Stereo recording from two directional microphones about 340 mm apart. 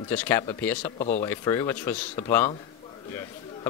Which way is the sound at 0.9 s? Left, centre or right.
Centre.